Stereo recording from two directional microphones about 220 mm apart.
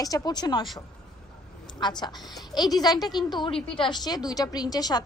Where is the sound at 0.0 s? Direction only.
15° left (ahead or behind).